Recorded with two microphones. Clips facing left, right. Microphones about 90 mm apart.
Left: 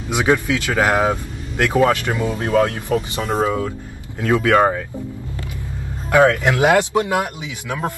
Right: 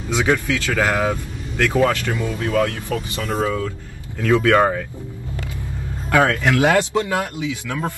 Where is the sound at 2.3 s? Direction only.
30° left (ahead or behind).